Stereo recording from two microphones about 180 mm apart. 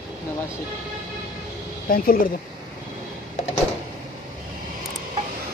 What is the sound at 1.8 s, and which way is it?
Speech, 55° left (ahead or behind).